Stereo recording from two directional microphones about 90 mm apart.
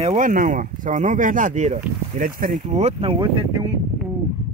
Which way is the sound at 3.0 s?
70° right (ahead or behind).